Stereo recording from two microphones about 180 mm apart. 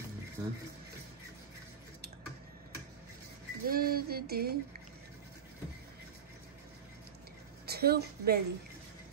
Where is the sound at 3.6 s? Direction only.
55° right (ahead or behind).